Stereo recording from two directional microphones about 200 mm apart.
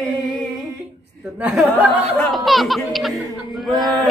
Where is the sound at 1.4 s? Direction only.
Centre (ahead or behind).